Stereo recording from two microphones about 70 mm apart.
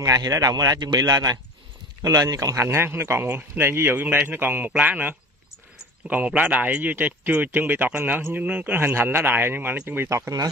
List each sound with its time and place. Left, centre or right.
0.0 s speech: right
2.6 s a man's voice: right
10.0 s speech: right